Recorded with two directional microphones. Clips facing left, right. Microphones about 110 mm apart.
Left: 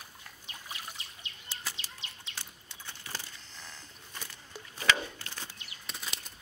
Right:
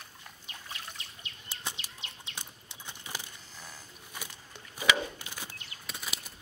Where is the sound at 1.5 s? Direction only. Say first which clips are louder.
Right 1 dB; 20° right (ahead or behind).